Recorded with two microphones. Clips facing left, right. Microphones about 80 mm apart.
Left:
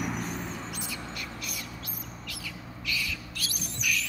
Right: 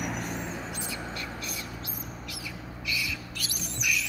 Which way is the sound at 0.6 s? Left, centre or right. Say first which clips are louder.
Right 2 dB; right.